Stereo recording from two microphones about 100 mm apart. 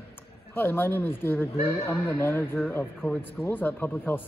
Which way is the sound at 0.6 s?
20° left (ahead or behind).